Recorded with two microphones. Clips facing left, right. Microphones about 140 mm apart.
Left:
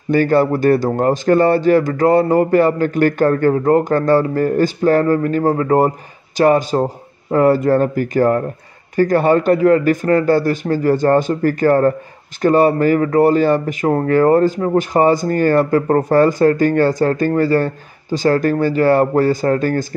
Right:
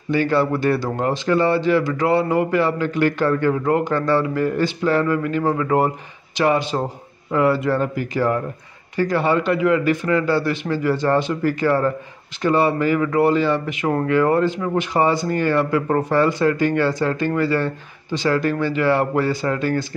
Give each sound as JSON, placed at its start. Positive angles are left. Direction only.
{"t": 0.1, "sound": "speech", "side_deg": 45}